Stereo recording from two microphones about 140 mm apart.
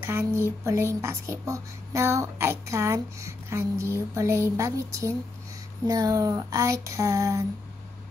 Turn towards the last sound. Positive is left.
turn(degrees=-20)  # may be behind; listen again after turning